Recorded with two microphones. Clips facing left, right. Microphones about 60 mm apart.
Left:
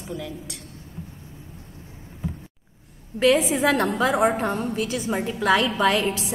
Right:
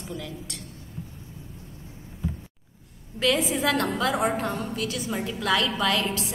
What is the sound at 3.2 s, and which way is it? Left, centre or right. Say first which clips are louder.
A woman's voice: left 5 dB; left.